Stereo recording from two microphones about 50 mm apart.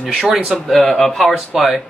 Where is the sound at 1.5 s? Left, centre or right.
Centre.